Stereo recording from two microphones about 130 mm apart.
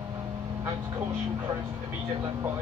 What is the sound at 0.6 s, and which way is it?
Vehicle, 20° right (ahead or behind).